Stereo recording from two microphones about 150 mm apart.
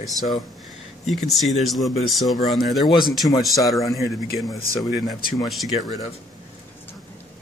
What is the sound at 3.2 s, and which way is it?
Speech, 25° left (ahead or behind).